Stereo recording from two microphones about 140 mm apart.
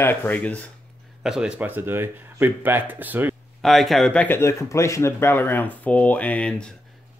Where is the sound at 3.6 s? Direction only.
Centre (ahead or behind).